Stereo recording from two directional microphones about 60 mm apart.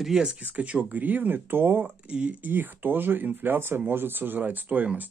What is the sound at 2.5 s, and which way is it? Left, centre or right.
Speech, right.